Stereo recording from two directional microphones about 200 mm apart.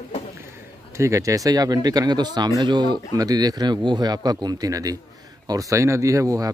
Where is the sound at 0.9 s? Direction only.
15° right (ahead or behind).